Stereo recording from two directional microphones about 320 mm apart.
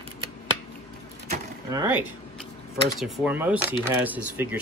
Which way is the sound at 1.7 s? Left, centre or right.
Centre.